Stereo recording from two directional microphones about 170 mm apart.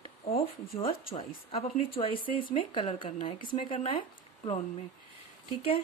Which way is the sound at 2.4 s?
55° left (ahead or behind).